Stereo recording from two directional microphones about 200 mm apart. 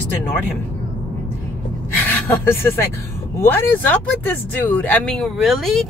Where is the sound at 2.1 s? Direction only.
10° left (ahead or behind).